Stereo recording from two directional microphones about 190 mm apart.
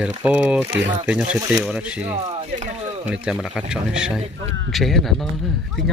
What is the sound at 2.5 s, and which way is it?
Speech, 40° right (ahead or behind).